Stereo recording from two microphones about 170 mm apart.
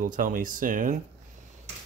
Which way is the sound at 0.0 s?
55° right (ahead or behind).